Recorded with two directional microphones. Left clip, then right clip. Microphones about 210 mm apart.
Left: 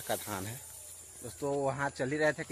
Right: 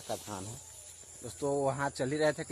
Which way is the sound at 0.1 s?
30° left (ahead or behind).